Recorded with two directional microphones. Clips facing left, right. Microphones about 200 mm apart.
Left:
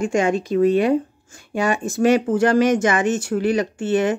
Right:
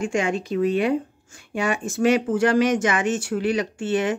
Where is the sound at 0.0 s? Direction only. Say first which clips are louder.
Left 4 dB; 40° left (ahead or behind).